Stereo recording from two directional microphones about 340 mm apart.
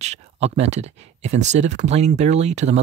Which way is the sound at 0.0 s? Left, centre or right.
Centre.